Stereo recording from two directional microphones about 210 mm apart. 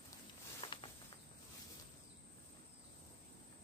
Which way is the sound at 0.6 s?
25° left (ahead or behind).